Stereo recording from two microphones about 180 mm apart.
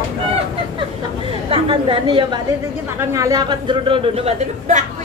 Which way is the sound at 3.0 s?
20° right (ahead or behind).